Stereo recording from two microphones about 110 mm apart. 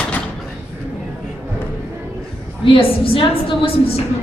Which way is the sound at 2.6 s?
55° left (ahead or behind).